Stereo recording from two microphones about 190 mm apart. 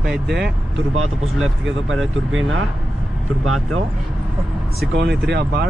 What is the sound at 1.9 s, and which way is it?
Speech, 90° right.